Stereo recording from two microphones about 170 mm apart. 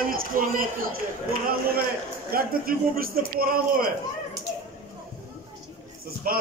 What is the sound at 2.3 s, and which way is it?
A man's voice, 60° right (ahead or behind).